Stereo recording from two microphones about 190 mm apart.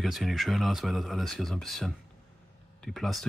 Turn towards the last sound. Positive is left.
turn(degrees=0)  # may be behind; listen again after turning